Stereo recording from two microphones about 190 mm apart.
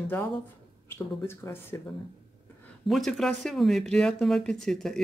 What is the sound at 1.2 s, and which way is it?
Speech, 15° left (ahead or behind).